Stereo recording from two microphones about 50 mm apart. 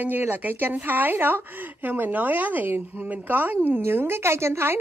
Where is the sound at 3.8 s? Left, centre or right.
Right.